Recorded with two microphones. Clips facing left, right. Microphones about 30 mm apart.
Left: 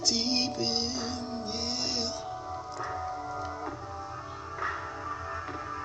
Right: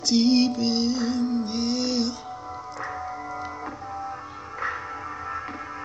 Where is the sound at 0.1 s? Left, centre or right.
Right.